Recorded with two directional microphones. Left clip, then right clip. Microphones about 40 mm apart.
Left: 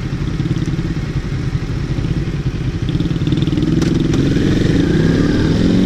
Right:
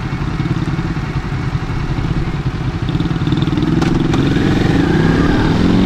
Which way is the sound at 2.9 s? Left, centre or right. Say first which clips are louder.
Right 1 dB; right.